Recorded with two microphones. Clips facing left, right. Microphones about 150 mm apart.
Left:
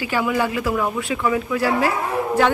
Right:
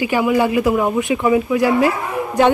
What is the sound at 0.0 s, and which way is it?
Speech, 15° right (ahead or behind).